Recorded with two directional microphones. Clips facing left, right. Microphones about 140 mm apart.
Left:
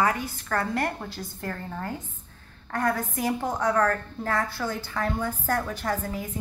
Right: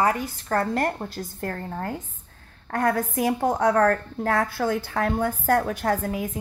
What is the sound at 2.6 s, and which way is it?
A woman's voice, 60° right (ahead or behind).